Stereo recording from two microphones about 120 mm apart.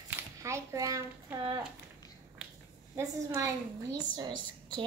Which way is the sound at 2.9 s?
25° right (ahead or behind).